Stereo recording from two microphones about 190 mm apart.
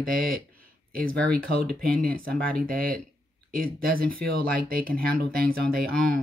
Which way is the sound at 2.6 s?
50° right (ahead or behind).